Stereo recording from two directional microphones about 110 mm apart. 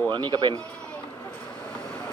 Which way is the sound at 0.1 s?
40° right (ahead or behind).